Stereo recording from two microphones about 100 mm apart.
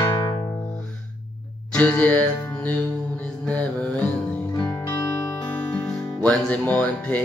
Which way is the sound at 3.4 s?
15° left (ahead or behind).